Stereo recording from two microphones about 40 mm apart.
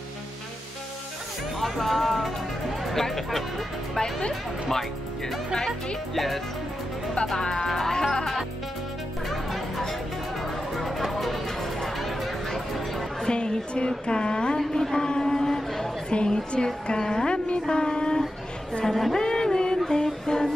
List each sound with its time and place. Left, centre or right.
1.6 s speech: centre
7.3 s music: centre
7.9 s speech: centre
9.3 s music: centre
13.3 s a woman's voice: left
14.7 s a sound: centre
16.1 s a woman's voice: left
18.9 s speech: centre
19.1 s music: centre